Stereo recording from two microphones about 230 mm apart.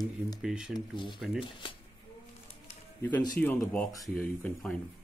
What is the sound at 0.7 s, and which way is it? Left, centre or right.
Speech, left.